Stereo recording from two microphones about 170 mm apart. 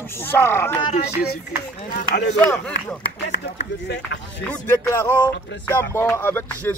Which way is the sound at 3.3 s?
80° left.